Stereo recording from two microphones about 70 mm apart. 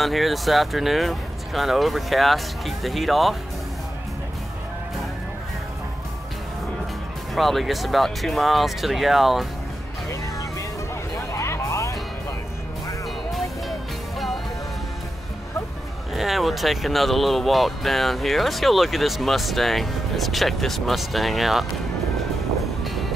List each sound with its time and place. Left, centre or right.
0.0 s speech: centre
7.3 s speech: centre
11.1 s music: left
13.3 s music: centre
16.1 s speech: centre